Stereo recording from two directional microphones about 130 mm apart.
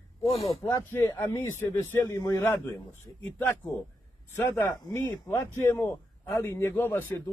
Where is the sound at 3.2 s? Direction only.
15° left (ahead or behind).